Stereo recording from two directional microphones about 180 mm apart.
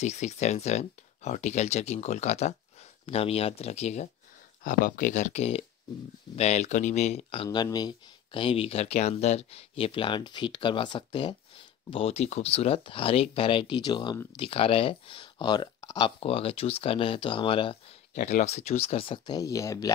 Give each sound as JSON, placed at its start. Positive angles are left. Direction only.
{"t": 0.0, "sound": "speech", "side_deg": 40}
{"t": 7.4, "sound": "speech", "side_deg": 20}
{"t": 18.1, "sound": "speech", "side_deg": 40}